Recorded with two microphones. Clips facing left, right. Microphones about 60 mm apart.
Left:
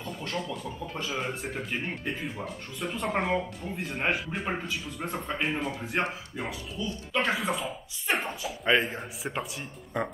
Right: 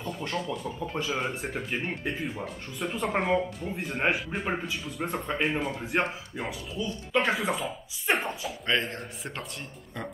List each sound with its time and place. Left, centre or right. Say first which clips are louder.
0.3 s speech: right 1 dB; centre
6.8 s speech: right 2 dB; centre
7.3 s a man's voice: right 1 dB; centre
9.9 s speech: left 6 dB; left